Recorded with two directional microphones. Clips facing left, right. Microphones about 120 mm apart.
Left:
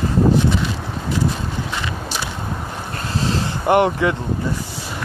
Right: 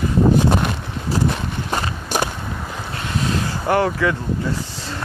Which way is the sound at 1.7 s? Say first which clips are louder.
Right 3 dB; 50° right (ahead or behind).